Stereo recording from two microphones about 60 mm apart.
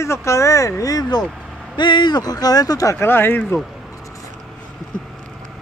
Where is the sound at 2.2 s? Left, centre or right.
Left.